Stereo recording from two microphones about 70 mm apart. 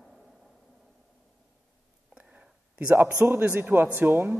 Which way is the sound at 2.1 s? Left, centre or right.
Centre.